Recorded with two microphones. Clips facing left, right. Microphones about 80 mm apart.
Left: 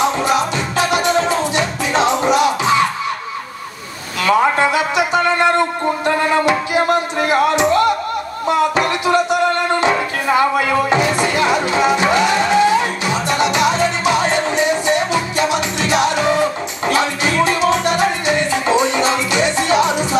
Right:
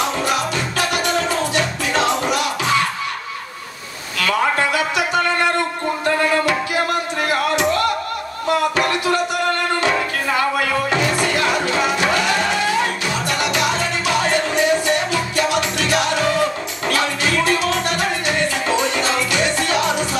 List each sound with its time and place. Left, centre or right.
0.0 s music: left
4.2 s a sound: left
6.0 s music: left